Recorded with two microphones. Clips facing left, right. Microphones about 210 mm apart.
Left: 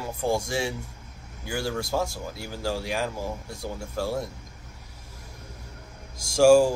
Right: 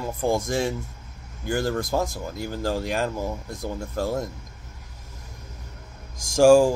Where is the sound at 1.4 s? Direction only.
50° right (ahead or behind).